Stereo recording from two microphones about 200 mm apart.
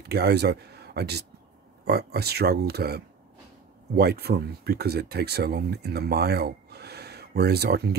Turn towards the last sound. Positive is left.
turn(degrees=-55)  # may be behind; listen again after turning